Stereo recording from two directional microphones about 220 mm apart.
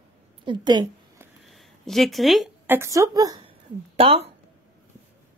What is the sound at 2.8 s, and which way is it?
A woman's voice, 15° right (ahead or behind).